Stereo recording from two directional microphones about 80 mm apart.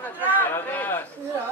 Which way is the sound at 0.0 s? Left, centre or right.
Left.